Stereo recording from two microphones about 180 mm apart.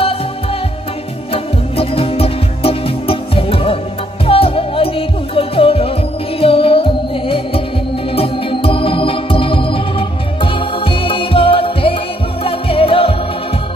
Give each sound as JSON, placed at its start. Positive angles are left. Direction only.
{"t": 1.3, "sound": "music", "side_deg": 30}
{"t": 8.1, "sound": "organ", "side_deg": 30}
{"t": 12.4, "sound": "music", "side_deg": 30}